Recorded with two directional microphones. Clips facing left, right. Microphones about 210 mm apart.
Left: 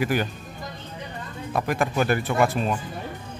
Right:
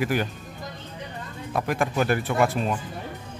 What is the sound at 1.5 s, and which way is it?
Speech, centre (ahead or behind).